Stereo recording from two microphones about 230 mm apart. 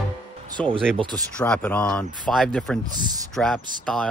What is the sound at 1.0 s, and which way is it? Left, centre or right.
Speech, centre.